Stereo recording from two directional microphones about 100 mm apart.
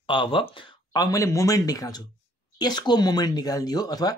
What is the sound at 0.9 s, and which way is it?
Speech, 40° left (ahead or behind).